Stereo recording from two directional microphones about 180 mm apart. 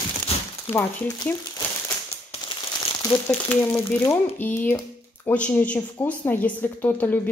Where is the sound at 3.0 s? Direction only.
20° left (ahead or behind).